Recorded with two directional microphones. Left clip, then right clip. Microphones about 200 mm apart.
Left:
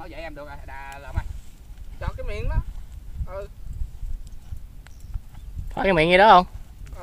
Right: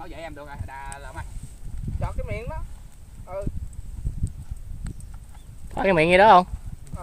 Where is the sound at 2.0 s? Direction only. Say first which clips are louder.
Even; 60° left (ahead or behind).